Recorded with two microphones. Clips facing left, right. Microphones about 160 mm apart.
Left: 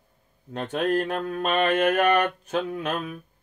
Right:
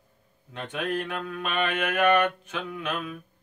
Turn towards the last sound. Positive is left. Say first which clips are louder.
# left 4 dB
turn(degrees=40)  # may be behind; listen again after turning